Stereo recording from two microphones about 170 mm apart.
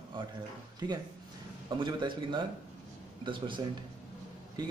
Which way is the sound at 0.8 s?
25° right (ahead or behind).